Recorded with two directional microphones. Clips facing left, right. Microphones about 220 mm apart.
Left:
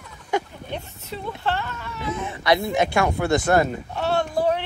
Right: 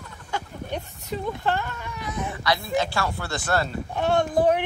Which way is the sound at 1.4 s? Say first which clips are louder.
Even; 10° right (ahead or behind).